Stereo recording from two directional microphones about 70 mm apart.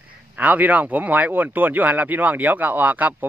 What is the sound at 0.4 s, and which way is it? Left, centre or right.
Speech, right.